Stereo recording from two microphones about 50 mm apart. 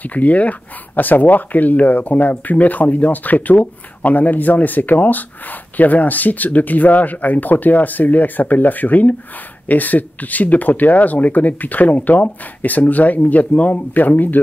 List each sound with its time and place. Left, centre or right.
0.0 s speech: left